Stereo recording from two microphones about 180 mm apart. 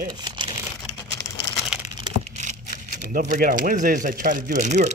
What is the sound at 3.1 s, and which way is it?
Speech, 50° right (ahead or behind).